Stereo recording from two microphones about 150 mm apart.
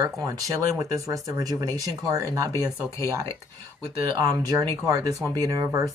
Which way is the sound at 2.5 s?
20° left (ahead or behind).